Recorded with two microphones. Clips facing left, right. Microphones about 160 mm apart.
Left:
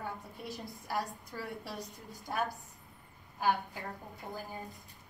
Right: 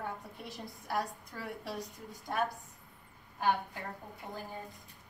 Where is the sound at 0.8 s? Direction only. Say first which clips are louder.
Right 1 dB; centre (ahead or behind).